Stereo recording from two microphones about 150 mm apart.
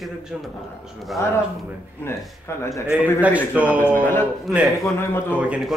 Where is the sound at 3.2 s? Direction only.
10° right (ahead or behind).